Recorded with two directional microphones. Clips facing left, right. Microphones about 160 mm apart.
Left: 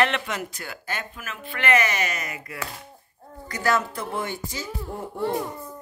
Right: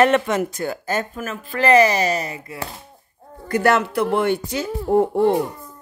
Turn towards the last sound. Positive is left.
turn(degrees=-65)  # may be behind; listen again after turning